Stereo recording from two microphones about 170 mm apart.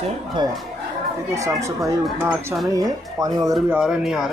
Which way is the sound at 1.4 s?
20° right (ahead or behind).